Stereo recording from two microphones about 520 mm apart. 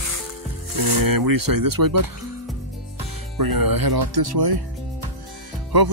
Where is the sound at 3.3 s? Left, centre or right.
Right.